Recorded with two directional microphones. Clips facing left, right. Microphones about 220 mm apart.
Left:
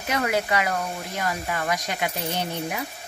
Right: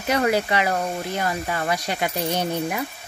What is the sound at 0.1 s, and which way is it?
Speech, 30° right (ahead or behind).